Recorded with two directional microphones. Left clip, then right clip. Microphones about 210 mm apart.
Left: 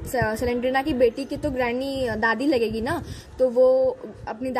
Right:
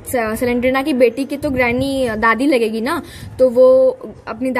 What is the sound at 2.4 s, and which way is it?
Speech, 45° right (ahead or behind).